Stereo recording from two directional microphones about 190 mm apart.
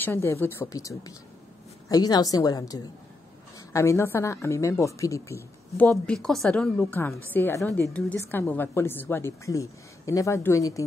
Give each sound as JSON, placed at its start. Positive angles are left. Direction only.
{"t": 0.0, "sound": "a woman's voice", "side_deg": 10}
{"t": 5.9, "sound": "a woman's voice", "side_deg": 5}